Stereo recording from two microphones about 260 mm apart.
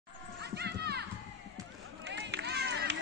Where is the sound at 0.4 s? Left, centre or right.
Right.